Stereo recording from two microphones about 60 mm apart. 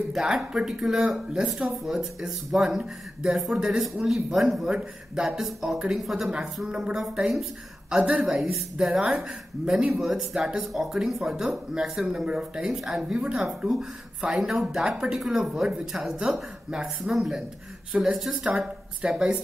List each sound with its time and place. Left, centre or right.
0.1 s speech: centre
13.1 s speech: centre